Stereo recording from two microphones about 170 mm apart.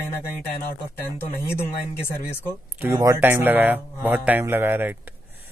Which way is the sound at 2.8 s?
15° right (ahead or behind).